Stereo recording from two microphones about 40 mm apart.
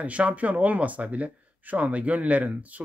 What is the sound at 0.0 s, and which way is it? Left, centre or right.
Speech, right.